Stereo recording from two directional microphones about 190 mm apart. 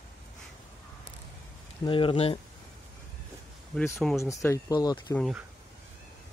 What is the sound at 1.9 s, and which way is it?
Speech, 25° left (ahead or behind).